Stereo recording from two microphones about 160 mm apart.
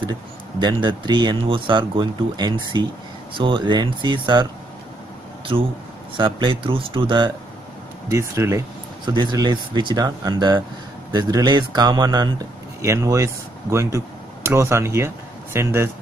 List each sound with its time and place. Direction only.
0.6 s speech: 30° right (ahead or behind)
6.1 s speech: 30° right (ahead or behind)
8.1 s speech: 15° right (ahead or behind)
9.0 s speech: 25° right (ahead or behind)